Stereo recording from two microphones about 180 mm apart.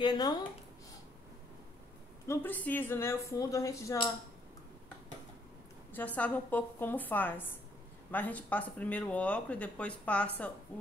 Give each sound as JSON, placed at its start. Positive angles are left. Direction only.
{"t": 0.0, "sound": "speech", "side_deg": 25}
{"t": 2.2, "sound": "speech", "side_deg": 10}
{"t": 5.9, "sound": "speech", "side_deg": 10}